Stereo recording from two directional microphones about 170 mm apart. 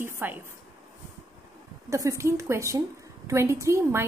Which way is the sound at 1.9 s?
20° right (ahead or behind).